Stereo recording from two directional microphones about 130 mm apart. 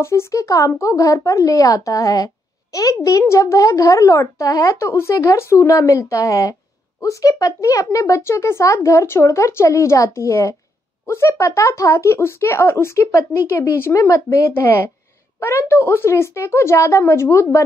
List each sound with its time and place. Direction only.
0.0 s speech: 20° left (ahead or behind)